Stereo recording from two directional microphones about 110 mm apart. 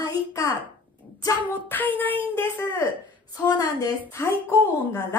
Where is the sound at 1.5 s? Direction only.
15° left (ahead or behind).